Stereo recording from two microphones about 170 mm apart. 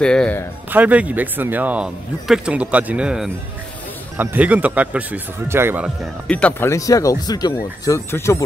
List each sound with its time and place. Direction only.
0.0 s a man's voice: 5° left (ahead or behind)
0.7 s speech: 10° right (ahead or behind)
6.2 s speech: 10° left (ahead or behind)